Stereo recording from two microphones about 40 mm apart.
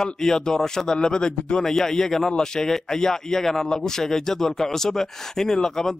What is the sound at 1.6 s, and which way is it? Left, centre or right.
A man's voice, centre.